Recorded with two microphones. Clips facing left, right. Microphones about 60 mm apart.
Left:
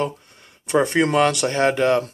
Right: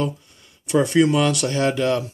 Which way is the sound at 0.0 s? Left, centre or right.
Left.